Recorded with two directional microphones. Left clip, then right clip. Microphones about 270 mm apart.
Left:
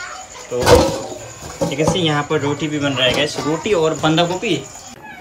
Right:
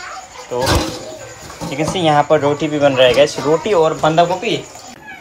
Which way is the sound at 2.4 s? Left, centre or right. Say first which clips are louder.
Right 6 dB; right.